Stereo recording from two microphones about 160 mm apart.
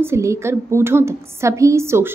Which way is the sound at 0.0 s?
15° right (ahead or behind).